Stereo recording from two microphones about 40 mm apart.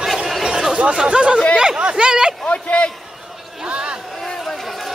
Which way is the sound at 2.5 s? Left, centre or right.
Left.